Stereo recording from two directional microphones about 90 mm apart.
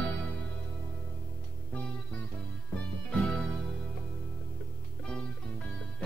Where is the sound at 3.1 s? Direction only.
15° left (ahead or behind).